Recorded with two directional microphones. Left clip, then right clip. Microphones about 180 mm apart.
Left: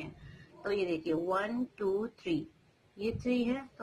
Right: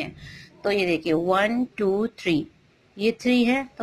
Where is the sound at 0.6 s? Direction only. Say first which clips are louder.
Right 10 dB; 30° right (ahead or behind).